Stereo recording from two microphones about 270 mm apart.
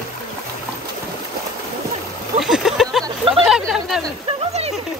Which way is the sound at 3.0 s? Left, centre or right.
Centre.